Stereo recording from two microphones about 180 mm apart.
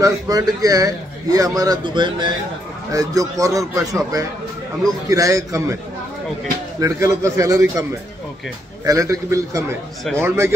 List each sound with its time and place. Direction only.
0.0 s a man's voice: 20° right (ahead or behind)
6.8 s a man's voice: 15° right (ahead or behind)
8.8 s a man's voice: 20° right (ahead or behind)